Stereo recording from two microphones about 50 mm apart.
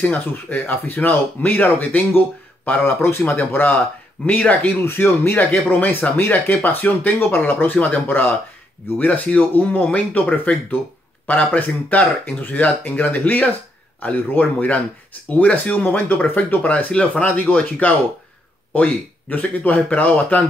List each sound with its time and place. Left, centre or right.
0.0 s speech: left
2.8 s speech: left
3.3 s speech: left
4.3 s speech: left
4.8 s speech: left
5.4 s speech: left
7.2 s speech: left
8.1 s speech: left
8.9 s speech: left